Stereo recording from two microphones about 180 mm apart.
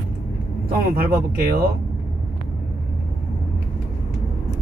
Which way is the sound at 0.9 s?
55° right (ahead or behind).